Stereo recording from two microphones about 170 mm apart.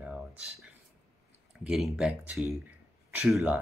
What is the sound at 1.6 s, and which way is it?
Speech, centre (ahead or behind).